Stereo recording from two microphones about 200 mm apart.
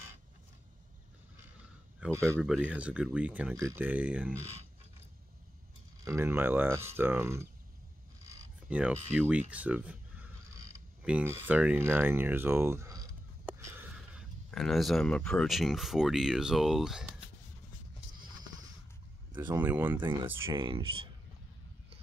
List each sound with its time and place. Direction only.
2.0 s speech: 10° right (ahead or behind)
6.0 s speech: 10° right (ahead or behind)
8.6 s speech: 5° right (ahead or behind)
13.5 s a sound: 10° right (ahead or behind)
14.5 s speech: centre (ahead or behind)
19.5 s speech: 10° right (ahead or behind)
20.4 s speech: 25° right (ahead or behind)